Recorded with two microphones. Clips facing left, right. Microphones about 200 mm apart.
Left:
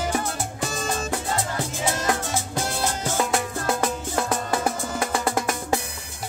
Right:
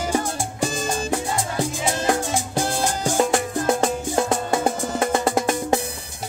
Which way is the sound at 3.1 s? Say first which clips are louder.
Right 6 dB; 30° right (ahead or behind).